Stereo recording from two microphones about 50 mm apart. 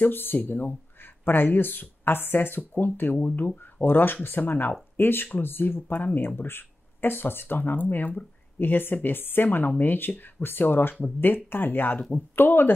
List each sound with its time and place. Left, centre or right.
0.0 s speech: left
3.8 s speech: left